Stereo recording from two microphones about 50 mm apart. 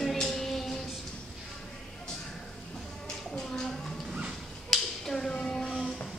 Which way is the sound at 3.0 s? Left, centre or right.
Centre.